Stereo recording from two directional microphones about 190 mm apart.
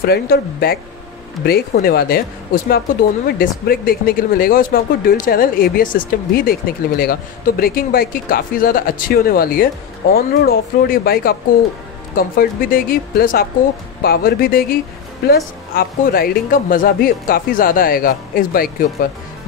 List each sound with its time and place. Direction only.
0.0 s speech: 55° left (ahead or behind)